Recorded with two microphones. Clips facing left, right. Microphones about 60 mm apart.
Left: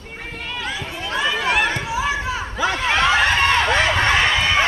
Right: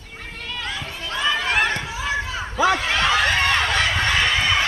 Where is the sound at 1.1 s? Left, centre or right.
Centre.